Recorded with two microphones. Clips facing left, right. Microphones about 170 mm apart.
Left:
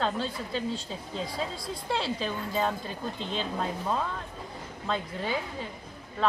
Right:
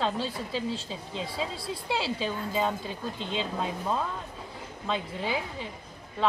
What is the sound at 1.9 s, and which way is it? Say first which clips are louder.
Speech: even; 5° right (ahead or behind).